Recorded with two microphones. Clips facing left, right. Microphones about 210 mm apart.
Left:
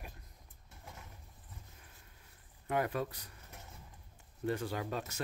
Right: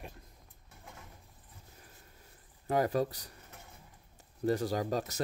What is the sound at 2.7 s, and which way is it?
Speech, 35° right (ahead or behind).